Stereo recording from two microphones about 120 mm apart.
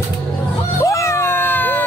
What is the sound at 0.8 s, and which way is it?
Cat, 25° left (ahead or behind).